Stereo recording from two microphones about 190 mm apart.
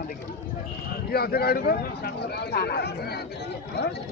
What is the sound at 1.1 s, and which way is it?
Speech, 55° left (ahead or behind).